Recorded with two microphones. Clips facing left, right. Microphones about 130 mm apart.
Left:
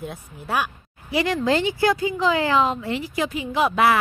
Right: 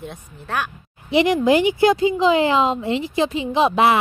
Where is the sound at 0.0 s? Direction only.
5° left (ahead or behind).